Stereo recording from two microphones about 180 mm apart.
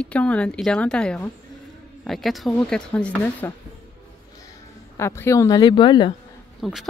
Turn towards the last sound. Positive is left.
turn(degrees=0)  # may be behind; listen again after turning